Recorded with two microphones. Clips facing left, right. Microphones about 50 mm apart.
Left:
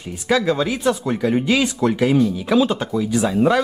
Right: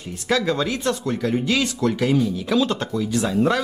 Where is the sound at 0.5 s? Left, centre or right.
Centre.